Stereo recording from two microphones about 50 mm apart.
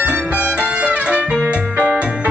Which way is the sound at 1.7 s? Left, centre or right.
Right.